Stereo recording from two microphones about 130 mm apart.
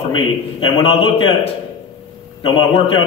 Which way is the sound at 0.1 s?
40° left (ahead or behind).